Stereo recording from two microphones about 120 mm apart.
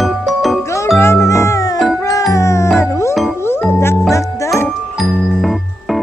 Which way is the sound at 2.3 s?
25° left (ahead or behind).